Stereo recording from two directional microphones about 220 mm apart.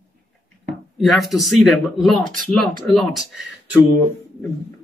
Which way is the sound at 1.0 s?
Centre (ahead or behind).